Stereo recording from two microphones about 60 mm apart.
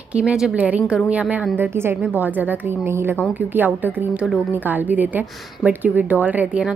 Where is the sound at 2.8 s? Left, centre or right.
Right.